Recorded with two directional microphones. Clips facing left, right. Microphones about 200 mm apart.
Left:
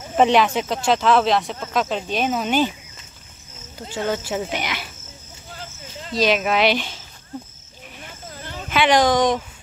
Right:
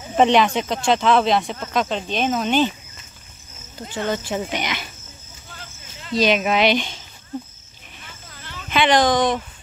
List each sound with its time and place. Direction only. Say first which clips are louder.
0.1 s speech: even; 5° left (ahead or behind)
3.9 s speech: even; 10° left (ahead or behind)
6.1 s speech: right 1 dB; centre (ahead or behind)
8.4 s a sound: left 5 dB; 40° left (ahead or behind)
8.6 s speech: even; 5° left (ahead or behind)